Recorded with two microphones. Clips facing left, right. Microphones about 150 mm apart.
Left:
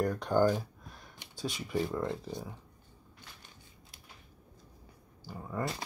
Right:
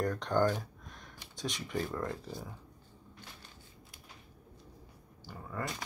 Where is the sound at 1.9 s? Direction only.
20° left (ahead or behind).